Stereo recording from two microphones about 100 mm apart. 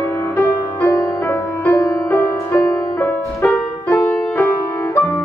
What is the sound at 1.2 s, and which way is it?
Music, 15° left (ahead or behind).